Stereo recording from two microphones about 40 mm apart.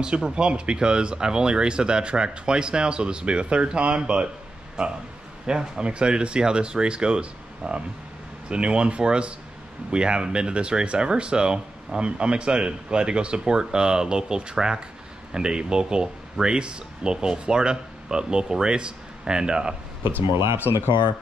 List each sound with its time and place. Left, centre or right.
0.0 s speech: right
20.1 s speech: right
20.5 s speech: left